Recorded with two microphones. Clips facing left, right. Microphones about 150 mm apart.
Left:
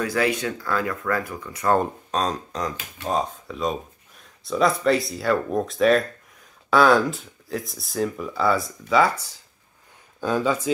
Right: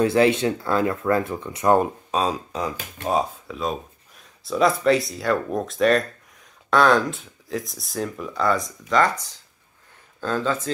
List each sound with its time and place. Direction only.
0.0 s speech: 25° right (ahead or behind)
1.8 s speech: 5° right (ahead or behind); by 10.7 s 10° left (ahead or behind)